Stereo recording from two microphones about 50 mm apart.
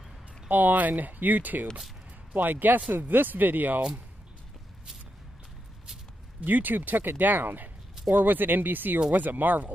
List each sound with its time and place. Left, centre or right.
0.5 s speech: right
6.4 s speech: right